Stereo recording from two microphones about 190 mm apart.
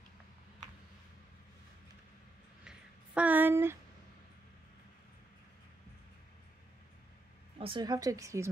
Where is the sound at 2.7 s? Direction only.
5° right (ahead or behind).